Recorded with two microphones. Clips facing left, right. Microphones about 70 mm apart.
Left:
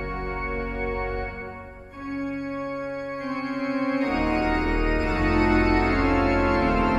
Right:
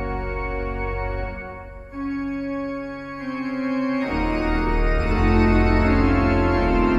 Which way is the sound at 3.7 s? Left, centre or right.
Left.